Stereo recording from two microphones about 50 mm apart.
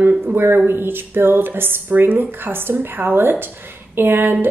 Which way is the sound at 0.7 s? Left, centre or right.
Right.